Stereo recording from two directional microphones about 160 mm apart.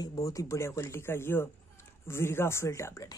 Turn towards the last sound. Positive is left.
turn(degrees=20)  # may be behind; listen again after turning